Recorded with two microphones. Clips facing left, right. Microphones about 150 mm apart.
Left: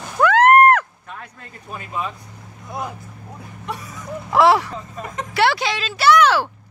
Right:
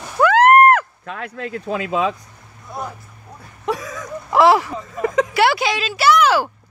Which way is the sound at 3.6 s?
90° right.